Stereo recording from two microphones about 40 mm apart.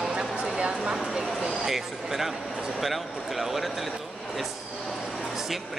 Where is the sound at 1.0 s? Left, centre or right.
Centre.